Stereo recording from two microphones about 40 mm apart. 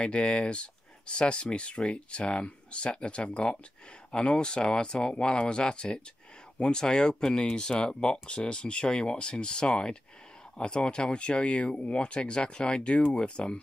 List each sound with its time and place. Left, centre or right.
0.0 s speech: left